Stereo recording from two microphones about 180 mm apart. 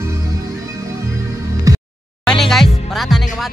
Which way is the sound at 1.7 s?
20° right (ahead or behind).